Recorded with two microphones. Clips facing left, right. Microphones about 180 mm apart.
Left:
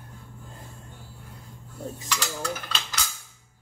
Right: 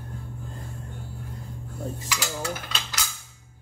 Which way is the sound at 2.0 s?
5° right (ahead or behind).